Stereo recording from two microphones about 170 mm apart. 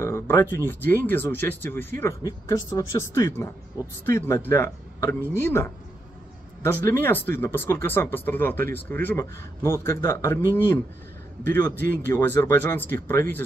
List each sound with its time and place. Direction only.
0.0 s speech: 15° left (ahead or behind)